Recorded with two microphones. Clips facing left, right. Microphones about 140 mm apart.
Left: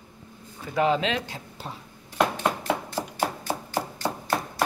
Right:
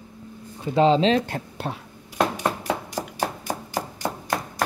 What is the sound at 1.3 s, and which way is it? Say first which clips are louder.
Speech: right 8 dB; 65° right (ahead or behind).